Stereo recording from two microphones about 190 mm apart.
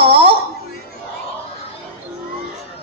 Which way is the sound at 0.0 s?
30° right (ahead or behind).